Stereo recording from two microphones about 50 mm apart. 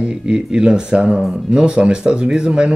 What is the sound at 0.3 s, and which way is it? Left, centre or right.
Speech, centre.